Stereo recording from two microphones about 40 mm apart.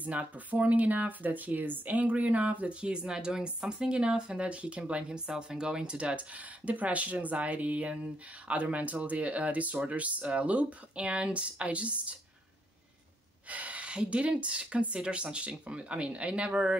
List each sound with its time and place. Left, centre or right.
0.0 s speech: right
2.8 s speech: right
5.9 s speech: right
13.5 s speech: right